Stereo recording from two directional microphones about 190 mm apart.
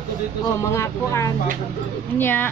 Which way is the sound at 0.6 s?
15° left (ahead or behind).